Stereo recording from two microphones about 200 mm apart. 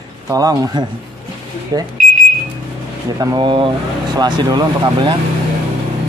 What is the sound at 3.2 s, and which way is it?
Speech, 20° right (ahead or behind).